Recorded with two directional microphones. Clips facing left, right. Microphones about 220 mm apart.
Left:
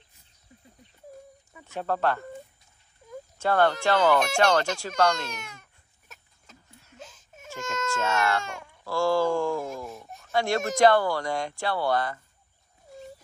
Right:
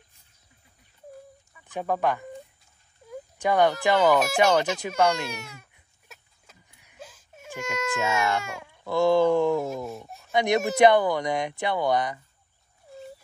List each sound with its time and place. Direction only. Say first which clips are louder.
1.7 s speech: right 1 dB; 15° right (ahead or behind)
3.1 s dog: right 1 dB; 15° right (ahead or behind)
8.8 s speech: right 4 dB; 20° right (ahead or behind)
9.8 s speech: right 4 dB; 10° right (ahead or behind)